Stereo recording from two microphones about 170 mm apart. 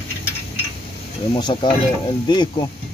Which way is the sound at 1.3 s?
30° left (ahead or behind).